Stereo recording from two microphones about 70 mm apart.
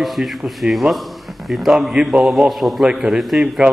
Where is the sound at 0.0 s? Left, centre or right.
Centre.